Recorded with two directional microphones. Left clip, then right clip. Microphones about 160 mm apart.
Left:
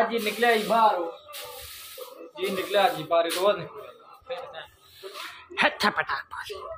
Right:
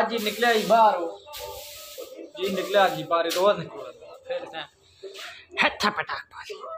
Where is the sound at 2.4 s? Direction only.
15° right (ahead or behind).